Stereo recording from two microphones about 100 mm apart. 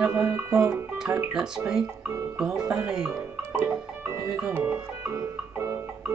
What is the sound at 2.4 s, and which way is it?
Speech, 5° right (ahead or behind).